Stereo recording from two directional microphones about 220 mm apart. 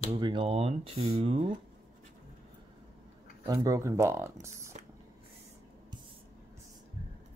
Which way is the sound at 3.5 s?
15° right (ahead or behind).